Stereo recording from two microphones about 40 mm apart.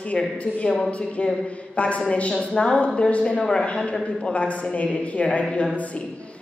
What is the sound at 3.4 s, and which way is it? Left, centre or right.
Speech, centre.